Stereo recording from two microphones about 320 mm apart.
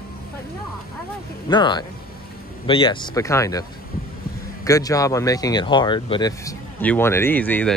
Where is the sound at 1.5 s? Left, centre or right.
Centre.